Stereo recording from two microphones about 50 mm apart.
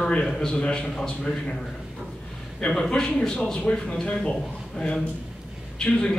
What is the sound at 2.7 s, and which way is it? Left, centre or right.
A man's voice, centre.